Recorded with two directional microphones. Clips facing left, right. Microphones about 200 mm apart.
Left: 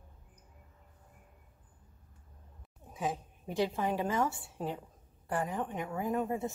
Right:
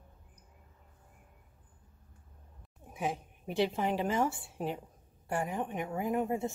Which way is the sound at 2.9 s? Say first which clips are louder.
Even; 15° right (ahead or behind).